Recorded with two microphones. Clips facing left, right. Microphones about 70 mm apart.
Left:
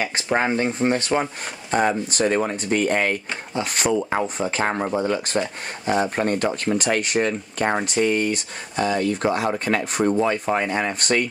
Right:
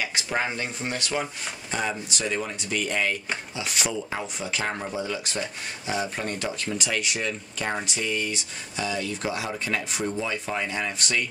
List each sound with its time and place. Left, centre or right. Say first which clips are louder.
0.0 s speech: left 6 dB; left